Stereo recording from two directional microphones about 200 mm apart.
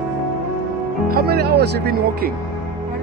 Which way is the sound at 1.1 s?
50° right (ahead or behind).